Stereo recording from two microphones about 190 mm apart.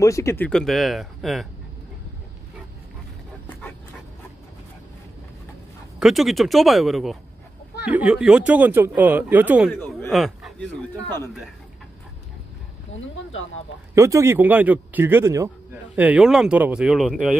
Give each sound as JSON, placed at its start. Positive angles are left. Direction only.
{"t": 0.0, "sound": "speech", "side_deg": 15}
{"t": 5.9, "sound": "speech", "side_deg": 0}
{"t": 9.7, "sound": "speech", "side_deg": 5}
{"t": 12.9, "sound": "speech", "side_deg": 90}
{"t": 13.9, "sound": "speech", "side_deg": -15}